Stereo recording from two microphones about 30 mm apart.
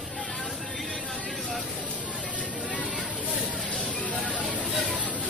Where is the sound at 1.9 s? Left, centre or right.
Right.